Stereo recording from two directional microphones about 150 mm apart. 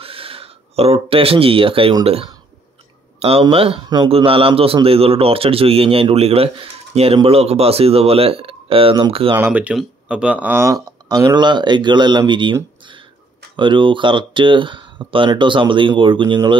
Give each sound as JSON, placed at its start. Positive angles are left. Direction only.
{"t": 0.0, "sound": "a man's voice", "side_deg": -40}
{"t": 9.3, "sound": "speech", "side_deg": -10}
{"t": 13.6, "sound": "a man's voice", "side_deg": -35}